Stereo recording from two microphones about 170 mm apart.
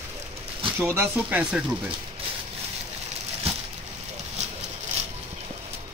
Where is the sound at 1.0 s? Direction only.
10° right (ahead or behind).